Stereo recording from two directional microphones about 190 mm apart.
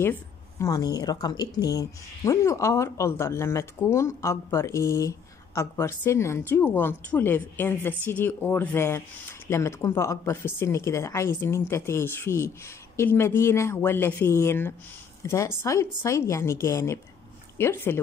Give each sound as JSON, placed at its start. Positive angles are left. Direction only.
{"t": 0.0, "sound": "a woman's voice", "side_deg": 15}